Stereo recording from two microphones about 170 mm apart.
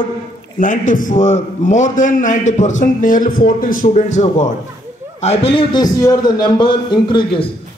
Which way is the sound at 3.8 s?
40° left (ahead or behind).